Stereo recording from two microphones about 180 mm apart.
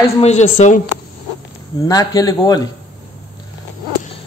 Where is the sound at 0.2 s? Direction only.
40° left (ahead or behind).